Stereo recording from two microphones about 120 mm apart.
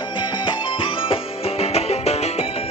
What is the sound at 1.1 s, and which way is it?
Music, 55° left (ahead or behind).